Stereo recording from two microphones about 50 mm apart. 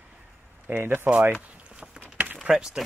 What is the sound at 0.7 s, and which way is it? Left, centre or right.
Speech, right.